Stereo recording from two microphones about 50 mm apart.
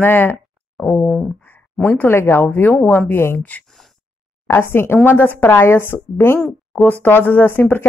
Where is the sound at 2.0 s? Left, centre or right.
Left.